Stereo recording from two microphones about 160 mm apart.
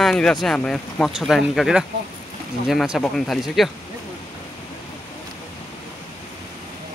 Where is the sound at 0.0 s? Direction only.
5° left (ahead or behind).